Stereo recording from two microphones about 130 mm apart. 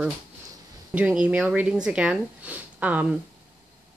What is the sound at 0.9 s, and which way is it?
A woman's voice, 10° right (ahead or behind).